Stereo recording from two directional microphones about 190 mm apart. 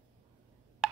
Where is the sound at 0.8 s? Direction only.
Centre (ahead or behind).